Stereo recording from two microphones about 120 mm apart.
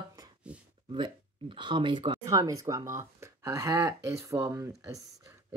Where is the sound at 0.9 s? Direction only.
40° right (ahead or behind).